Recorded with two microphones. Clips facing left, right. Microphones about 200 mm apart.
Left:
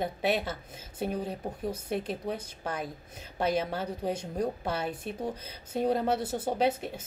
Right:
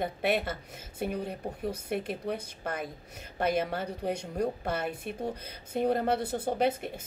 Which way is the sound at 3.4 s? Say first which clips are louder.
Even; 55° right (ahead or behind).